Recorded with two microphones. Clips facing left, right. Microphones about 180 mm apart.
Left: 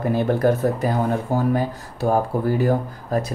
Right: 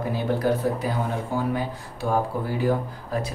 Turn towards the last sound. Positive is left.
turn(degrees=45)  # may be behind; listen again after turning